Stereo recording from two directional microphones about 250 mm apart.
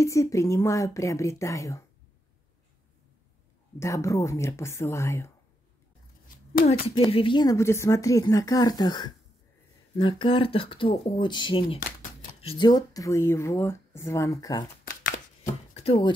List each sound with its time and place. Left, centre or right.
0.0 s speech: centre
3.8 s speech: centre
7.0 s speech: left
15.7 s a sound: left